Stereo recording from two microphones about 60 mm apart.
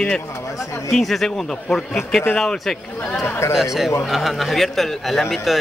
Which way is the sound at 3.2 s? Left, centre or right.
Left.